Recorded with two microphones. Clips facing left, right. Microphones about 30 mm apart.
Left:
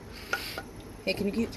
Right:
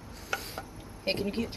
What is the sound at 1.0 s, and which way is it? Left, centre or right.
Speech, right.